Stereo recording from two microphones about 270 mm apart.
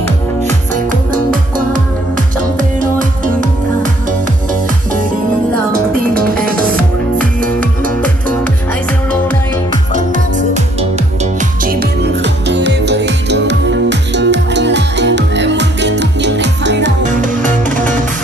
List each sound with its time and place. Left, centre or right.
1.1 s music: right
2.8 s music: right
5.7 s music: right
9.9 s music: right
11.6 s music: right
17.0 s music: right